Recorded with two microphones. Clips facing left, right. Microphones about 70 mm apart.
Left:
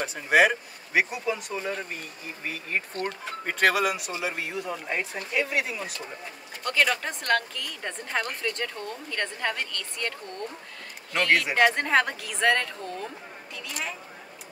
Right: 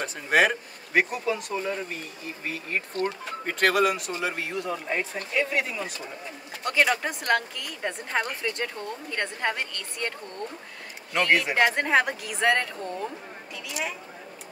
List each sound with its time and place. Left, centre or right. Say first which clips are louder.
0.0 s speech: left 1 dB; centre
3.4 s speech: right 1 dB; centre
6.6 s a woman's voice: right 1 dB; centre
11.1 s speech: even; centre
13.7 s speech: right 2 dB; centre